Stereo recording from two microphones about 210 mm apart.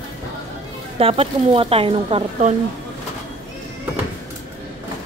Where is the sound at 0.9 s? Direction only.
30° right (ahead or behind).